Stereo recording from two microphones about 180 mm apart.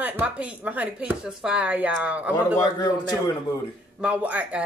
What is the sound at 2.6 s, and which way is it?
Speech, 25° left (ahead or behind).